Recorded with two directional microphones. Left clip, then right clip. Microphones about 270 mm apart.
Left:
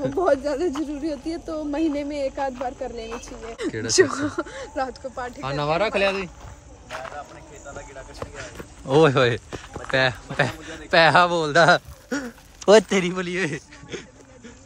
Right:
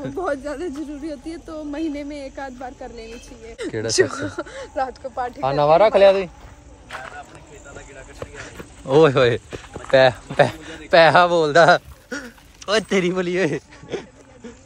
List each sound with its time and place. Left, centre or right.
0.0 s speech: centre
3.9 s speech: left; by 6.3 s centre
8.2 s speech: centre